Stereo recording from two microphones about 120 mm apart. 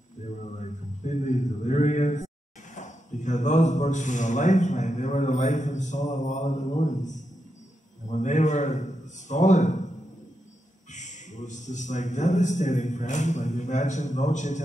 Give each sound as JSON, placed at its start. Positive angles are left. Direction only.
{"t": 0.4, "sound": "a sound", "side_deg": 80}
{"t": 8.1, "sound": "a man's voice", "side_deg": 90}
{"t": 10.9, "sound": "a man's voice", "side_deg": 85}